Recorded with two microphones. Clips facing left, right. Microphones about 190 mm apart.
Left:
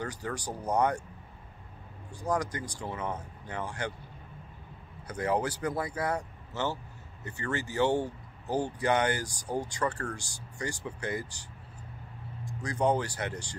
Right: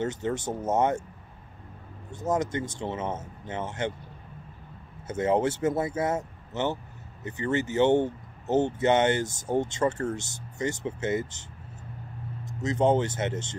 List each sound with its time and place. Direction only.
0.0 s speech: 25° right (ahead or behind)
2.0 s speech: 25° right (ahead or behind)
5.0 s speech: 25° right (ahead or behind)
12.4 s speech: 20° right (ahead or behind)